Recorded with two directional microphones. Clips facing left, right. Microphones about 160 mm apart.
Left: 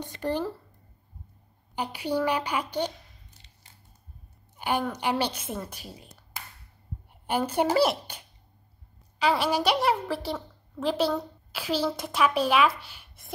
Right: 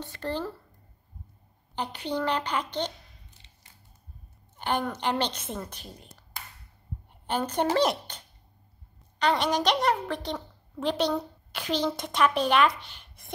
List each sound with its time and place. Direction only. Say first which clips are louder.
0.0 s a child's voice: left 3 dB; 15° left (ahead or behind)
1.8 s a child's voice: left 3 dB; 10° left (ahead or behind)
4.6 s a woman's voice: left 1 dB; 10° left (ahead or behind)